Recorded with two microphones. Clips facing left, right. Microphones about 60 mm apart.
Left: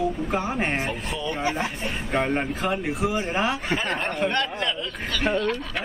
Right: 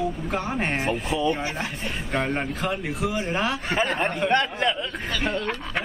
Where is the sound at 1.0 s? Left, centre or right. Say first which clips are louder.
Right 6 dB; centre.